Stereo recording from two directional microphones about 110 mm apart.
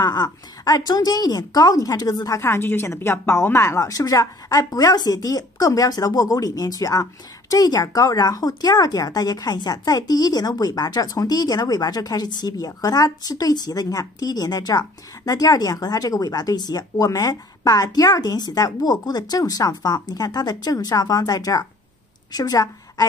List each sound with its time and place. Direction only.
0.0 s a woman's voice: 40° left (ahead or behind)